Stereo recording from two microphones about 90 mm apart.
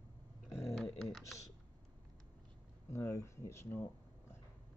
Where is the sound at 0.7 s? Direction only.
5° left (ahead or behind).